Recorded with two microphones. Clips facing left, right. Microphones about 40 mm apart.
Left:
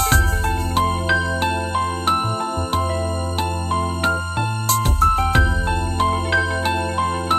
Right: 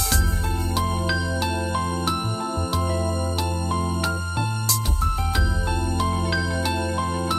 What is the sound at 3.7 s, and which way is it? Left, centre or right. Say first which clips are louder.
Music: left 7 dB; left.